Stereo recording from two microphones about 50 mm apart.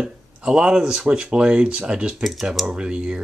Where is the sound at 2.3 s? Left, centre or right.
Centre.